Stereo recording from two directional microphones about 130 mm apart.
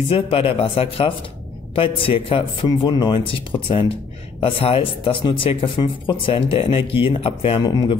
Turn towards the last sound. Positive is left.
turn(degrees=40)  # may be behind; listen again after turning